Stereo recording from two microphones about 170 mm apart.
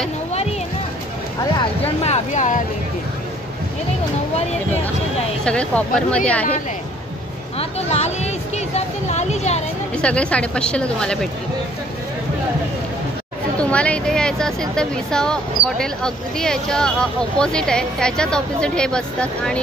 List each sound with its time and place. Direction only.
2.0 s speech: 45° left (ahead or behind)
5.4 s a woman's voice: 5° left (ahead or behind)
7.5 s speech: 40° left (ahead or behind)
10.0 s a woman's voice: 5° left (ahead or behind)
13.6 s speech: 5° left (ahead or behind)